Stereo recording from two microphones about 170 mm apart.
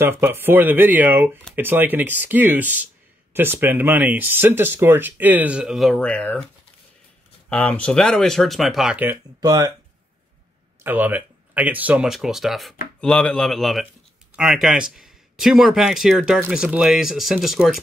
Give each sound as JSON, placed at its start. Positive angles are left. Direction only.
{"t": 0.0, "sound": "speech", "side_deg": -15}
{"t": 7.4, "sound": "speech", "side_deg": 5}
{"t": 10.8, "sound": "speech", "side_deg": -10}